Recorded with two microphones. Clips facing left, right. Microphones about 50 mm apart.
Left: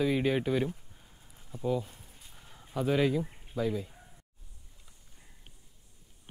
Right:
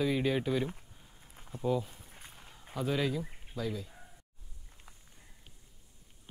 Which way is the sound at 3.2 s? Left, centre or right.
Centre.